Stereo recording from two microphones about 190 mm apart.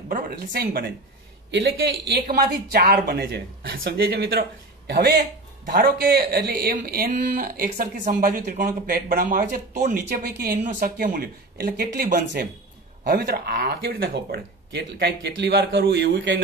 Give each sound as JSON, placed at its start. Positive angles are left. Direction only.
{"t": 0.1, "sound": "speech", "side_deg": -50}
{"t": 1.5, "sound": "a man's voice", "side_deg": -65}
{"t": 2.2, "sound": "speech", "side_deg": -50}